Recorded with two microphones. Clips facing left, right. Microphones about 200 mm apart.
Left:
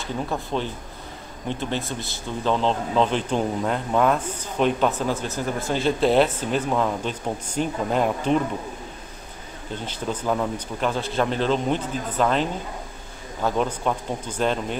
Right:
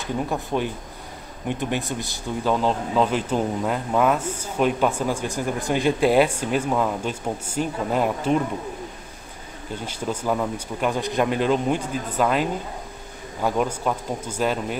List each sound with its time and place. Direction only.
0.0 s speech: 15° right (ahead or behind)
9.8 s speech: 10° right (ahead or behind)
10.9 s speech: 15° right (ahead or behind)